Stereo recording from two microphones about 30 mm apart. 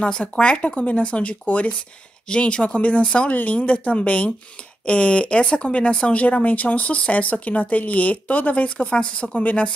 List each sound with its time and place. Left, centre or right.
0.2 s speech: left
2.2 s speech: left
3.4 s speech: left
6.1 s a woman's voice: left
8.6 s speech: left
9.4 s a woman's voice: left